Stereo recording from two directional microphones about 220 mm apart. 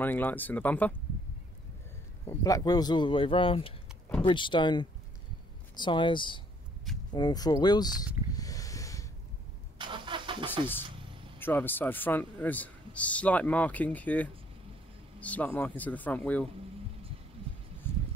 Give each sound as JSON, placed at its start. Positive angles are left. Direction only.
{"t": 0.0, "sound": "a man's voice", "side_deg": 10}
{"t": 2.2, "sound": "speech", "side_deg": 15}
{"t": 8.3, "sound": "snort", "side_deg": 15}
{"t": 9.8, "sound": "vehicle", "side_deg": -20}
{"t": 11.3, "sound": "a man's voice", "side_deg": 10}
{"t": 17.8, "sound": "a sound", "side_deg": 10}